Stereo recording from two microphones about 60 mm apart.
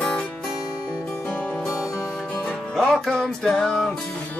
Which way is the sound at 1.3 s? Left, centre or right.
Left.